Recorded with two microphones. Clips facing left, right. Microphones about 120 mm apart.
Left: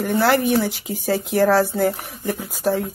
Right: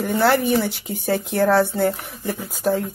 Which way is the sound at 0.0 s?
Centre (ahead or behind).